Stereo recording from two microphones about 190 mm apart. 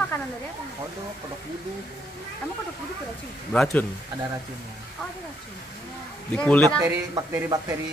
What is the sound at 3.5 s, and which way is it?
Speech, 5° left (ahead or behind).